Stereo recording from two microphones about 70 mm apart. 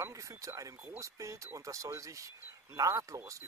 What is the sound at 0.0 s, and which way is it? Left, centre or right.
Speech, right.